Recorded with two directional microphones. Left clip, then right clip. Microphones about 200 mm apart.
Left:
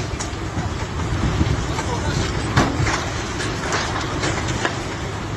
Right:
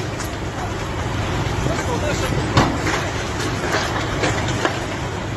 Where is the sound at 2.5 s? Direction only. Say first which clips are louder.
Right 1 dB; 45° right (ahead or behind).